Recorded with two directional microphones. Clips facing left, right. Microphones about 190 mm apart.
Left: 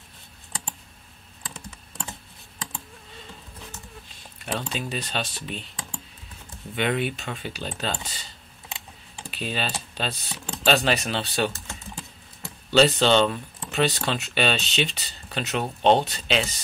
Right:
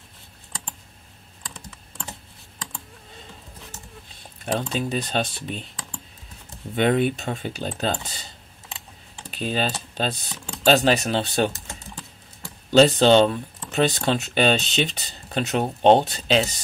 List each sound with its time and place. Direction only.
4.6 s speech: 45° right (ahead or behind)
6.7 s speech: 45° right (ahead or behind)
9.3 s speech: 40° right (ahead or behind)
12.7 s speech: 45° right (ahead or behind)